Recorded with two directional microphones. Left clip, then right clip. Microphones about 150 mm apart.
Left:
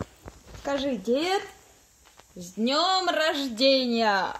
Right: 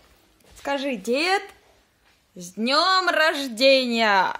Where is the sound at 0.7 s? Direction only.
10° right (ahead or behind).